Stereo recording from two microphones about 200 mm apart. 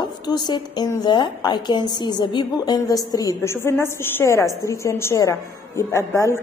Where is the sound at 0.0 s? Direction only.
20° left (ahead or behind).